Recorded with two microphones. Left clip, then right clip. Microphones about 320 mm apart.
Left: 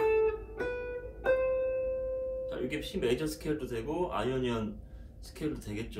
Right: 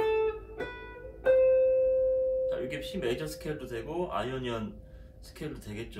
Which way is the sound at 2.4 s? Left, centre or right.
Centre.